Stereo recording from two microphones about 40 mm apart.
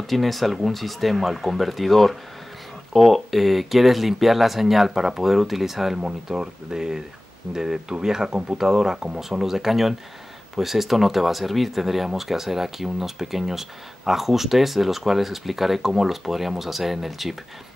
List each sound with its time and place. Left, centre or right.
0.0 s speech: centre